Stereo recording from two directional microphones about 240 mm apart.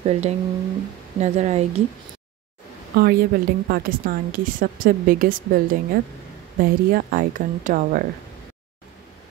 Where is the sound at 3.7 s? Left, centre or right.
Right.